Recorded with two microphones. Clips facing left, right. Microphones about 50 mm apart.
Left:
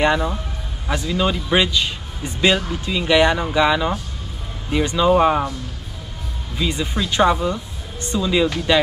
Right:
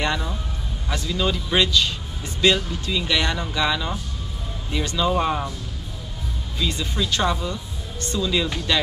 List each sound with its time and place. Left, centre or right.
0.0 s speech: left
6.5 s speech: centre